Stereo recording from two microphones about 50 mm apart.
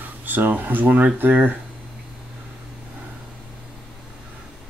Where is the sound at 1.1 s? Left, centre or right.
Right.